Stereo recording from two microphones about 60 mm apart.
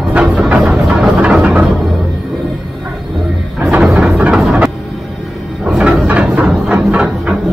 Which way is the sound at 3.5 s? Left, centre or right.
Centre.